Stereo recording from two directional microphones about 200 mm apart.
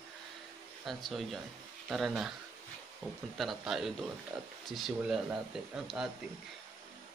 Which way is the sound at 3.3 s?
Centre (ahead or behind).